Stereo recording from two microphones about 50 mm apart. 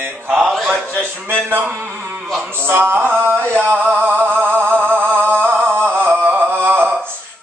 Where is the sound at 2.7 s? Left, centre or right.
Right.